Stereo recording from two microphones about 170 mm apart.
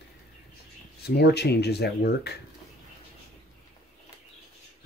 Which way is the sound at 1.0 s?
75° left (ahead or behind).